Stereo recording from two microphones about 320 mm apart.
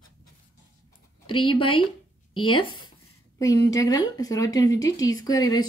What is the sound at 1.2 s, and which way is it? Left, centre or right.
Speech, centre.